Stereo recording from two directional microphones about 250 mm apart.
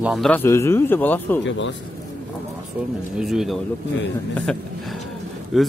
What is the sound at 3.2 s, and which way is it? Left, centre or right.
Speech, centre.